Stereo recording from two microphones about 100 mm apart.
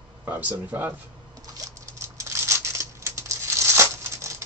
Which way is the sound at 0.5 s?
15° right (ahead or behind).